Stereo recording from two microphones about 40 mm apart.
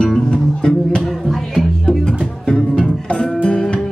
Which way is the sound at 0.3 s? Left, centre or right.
Left.